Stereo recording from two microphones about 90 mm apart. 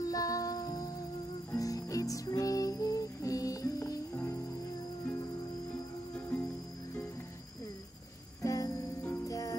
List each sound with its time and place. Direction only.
0.0 s music: 40° left (ahead or behind)
4.1 s cricket: 25° left (ahead or behind)
6.1 s cricket: 15° left (ahead or behind)
8.4 s music: 40° left (ahead or behind)